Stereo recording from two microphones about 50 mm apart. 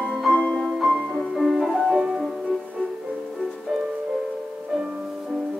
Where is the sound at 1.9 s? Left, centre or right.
Centre.